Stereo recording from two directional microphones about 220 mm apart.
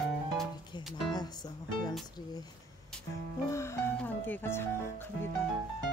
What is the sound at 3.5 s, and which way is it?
Music, 10° left (ahead or behind).